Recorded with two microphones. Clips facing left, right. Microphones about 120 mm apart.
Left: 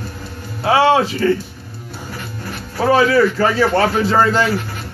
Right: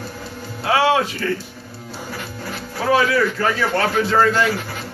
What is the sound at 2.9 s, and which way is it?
Speech, 30° left (ahead or behind).